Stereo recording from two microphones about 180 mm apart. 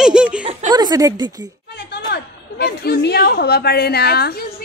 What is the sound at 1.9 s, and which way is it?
A woman's voice, 65° left (ahead or behind).